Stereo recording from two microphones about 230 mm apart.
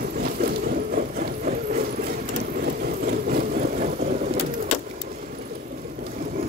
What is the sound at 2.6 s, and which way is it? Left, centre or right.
Vehicle, right.